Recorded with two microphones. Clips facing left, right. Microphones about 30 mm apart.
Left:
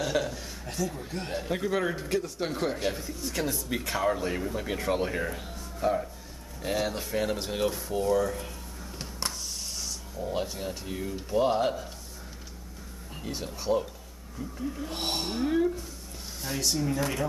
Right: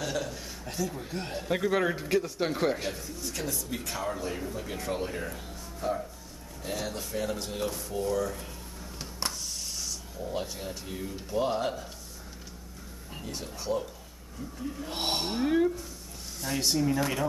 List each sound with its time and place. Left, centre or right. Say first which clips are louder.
0.3 s a man's voice: left 1 dB; centre
1.5 s speech: right 2 dB; centre
2.9 s speech: left 3 dB; centre
8.0 s speech: left 4 dB; centre
8.9 s a sound: even; centre
9.8 s speech: left 1 dB; centre
13.2 s speech: left 3 dB; centre
14.9 s speech: right 3 dB; centre